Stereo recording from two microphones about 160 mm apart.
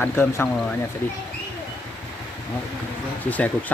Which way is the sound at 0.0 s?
15° left (ahead or behind).